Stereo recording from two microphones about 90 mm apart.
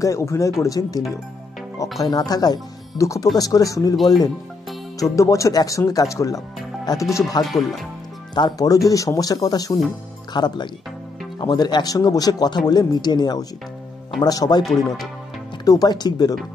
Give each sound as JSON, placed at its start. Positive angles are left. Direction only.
{"t": 0.0, "sound": "speech", "side_deg": 35}
{"t": 3.9, "sound": "speech", "side_deg": 0}
{"t": 5.1, "sound": "speech", "side_deg": 35}
{"t": 10.3, "sound": "speech", "side_deg": 55}
{"t": 15.6, "sound": "speech", "side_deg": 45}